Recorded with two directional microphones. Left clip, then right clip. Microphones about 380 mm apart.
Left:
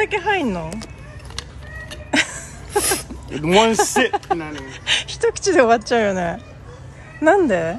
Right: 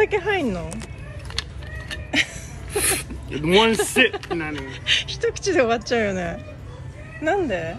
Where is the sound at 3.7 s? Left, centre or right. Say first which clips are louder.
Left 1 dB; centre.